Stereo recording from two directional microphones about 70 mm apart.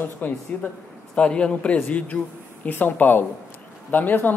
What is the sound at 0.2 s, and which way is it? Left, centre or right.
A man's voice, left.